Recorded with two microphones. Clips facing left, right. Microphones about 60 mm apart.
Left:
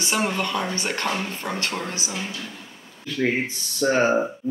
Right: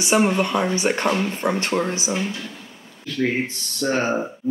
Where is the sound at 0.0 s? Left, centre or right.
Centre.